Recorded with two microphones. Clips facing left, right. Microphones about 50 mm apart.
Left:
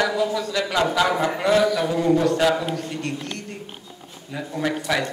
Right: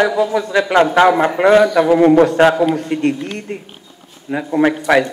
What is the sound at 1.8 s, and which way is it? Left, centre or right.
Speech, right.